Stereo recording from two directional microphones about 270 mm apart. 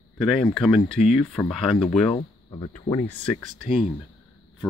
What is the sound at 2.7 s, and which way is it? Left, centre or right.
Speech, centre.